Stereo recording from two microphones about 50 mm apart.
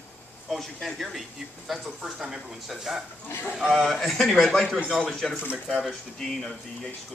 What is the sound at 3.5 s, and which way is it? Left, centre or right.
Speech, centre.